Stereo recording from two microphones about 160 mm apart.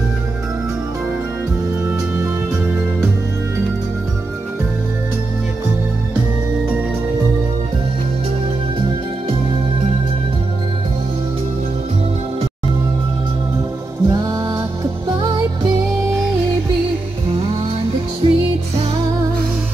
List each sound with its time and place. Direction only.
2.1 s music: 15° right (ahead or behind)
14.0 s music: 20° right (ahead or behind)
18.2 s music: 35° right (ahead or behind)